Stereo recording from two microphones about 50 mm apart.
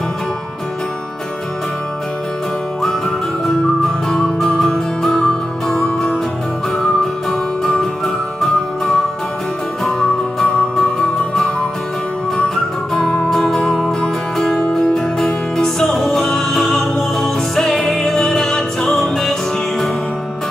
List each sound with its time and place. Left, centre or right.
3.4 s music: centre
6.8 s music: centre
10.0 s music: left
10.8 s music: centre
12.9 s music: centre